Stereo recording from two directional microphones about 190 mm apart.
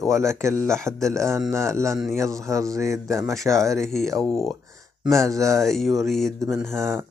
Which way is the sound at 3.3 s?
Centre (ahead or behind).